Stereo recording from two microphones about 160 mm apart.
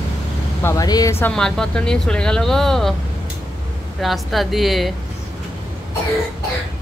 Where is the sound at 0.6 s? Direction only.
20° left (ahead or behind); by 2.9 s centre (ahead or behind).